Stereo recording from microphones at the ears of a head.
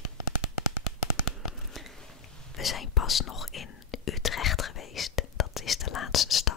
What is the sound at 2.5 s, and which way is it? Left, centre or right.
Whispering, left.